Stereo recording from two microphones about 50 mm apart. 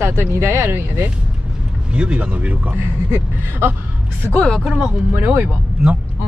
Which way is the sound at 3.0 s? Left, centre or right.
Right.